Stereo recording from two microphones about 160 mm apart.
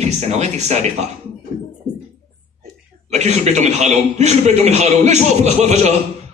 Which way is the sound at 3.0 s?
45° right (ahead or behind).